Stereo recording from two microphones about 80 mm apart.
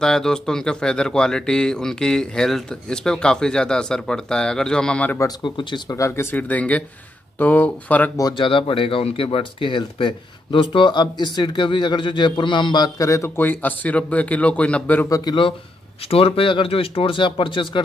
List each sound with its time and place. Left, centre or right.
0.0 s speech: centre
5.4 s speech: left
5.9 s speech: left
6.3 s a man's voice: centre
8.4 s speech: left
12.9 s speech: left
13.4 s a man's voice: left
15.0 s speech: left
16.3 s speech: left